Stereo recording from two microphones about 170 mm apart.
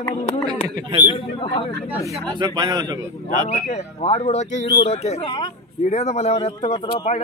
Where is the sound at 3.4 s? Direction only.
40° left (ahead or behind).